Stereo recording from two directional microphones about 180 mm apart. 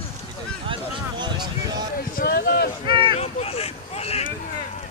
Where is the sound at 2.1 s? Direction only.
55° left (ahead or behind).